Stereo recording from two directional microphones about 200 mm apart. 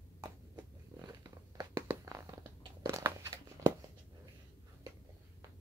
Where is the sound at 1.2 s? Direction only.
15° right (ahead or behind).